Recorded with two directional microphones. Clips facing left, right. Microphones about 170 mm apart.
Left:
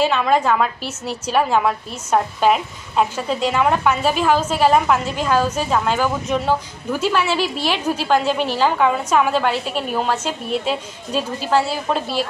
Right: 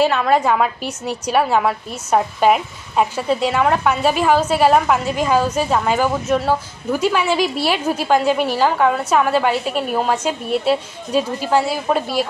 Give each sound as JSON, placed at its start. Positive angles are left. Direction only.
{"t": 0.0, "sound": "a woman's voice", "side_deg": -10}